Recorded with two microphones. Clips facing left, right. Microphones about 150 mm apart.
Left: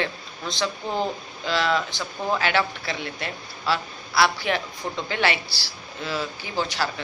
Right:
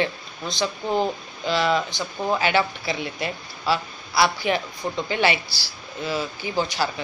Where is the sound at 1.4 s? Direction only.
5° right (ahead or behind).